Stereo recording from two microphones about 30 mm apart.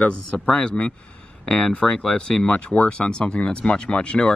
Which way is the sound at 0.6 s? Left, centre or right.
Left.